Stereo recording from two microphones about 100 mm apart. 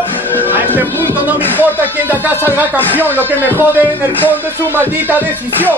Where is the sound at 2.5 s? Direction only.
15° right (ahead or behind).